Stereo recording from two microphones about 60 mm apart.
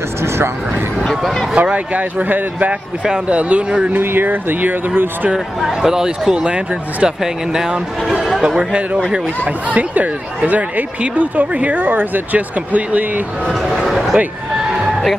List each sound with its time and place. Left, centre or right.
1.5 s speech: right
3.9 s speech: right
5.6 s speech: centre
8.5 s speech: centre
13.8 s a sound: centre
14.6 s neigh: centre